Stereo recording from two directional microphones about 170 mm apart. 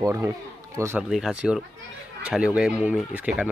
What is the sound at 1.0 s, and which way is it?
Speech, 5° right (ahead or behind).